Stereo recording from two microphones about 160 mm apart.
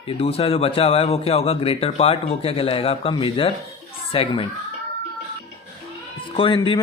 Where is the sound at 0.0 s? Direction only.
40° left (ahead or behind).